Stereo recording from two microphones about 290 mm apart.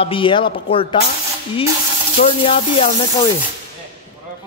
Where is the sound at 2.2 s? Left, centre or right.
Centre.